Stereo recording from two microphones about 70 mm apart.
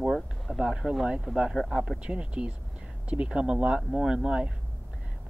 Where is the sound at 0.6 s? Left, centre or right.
Centre.